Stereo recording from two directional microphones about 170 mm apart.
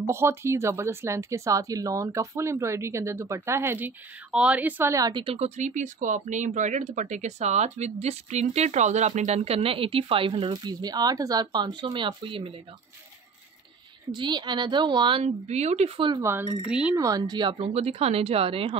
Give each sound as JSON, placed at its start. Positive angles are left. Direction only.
{"t": 0.0, "sound": "speech", "side_deg": -15}
{"t": 14.1, "sound": "speech", "side_deg": -25}
{"t": 16.1, "sound": "speech", "side_deg": -15}
{"t": 16.9, "sound": "speech", "side_deg": -20}